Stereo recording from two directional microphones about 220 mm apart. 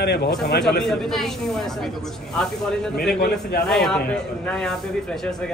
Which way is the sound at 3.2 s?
45° left (ahead or behind).